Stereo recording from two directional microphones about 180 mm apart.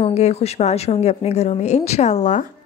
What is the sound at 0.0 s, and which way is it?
A woman's voice, 35° left (ahead or behind).